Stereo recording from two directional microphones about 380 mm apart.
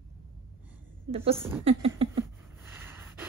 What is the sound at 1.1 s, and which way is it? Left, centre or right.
Speech, centre.